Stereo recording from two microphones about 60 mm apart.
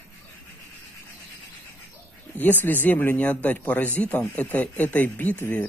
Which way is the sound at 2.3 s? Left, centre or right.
Left.